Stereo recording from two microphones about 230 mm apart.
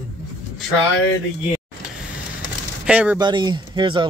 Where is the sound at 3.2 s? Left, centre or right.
Centre.